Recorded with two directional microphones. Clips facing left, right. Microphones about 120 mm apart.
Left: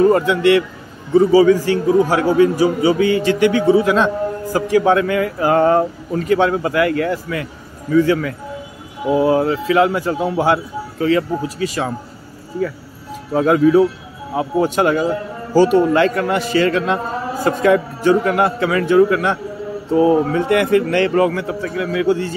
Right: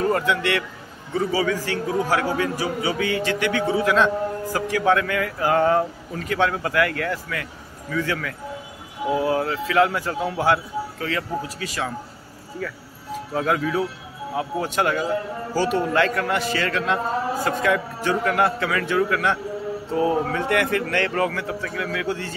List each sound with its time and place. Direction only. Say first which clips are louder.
0.0 s a man's voice: left 9 dB; 25° left (ahead or behind)
13.3 s a man's voice: left 10 dB; 30° left (ahead or behind)